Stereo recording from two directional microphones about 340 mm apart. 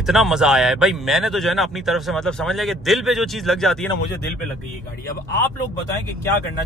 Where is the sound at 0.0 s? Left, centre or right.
Centre.